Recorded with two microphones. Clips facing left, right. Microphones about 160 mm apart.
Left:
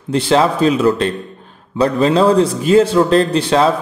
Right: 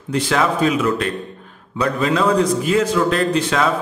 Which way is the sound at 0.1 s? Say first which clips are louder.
Left 5 dB; 30° left (ahead or behind).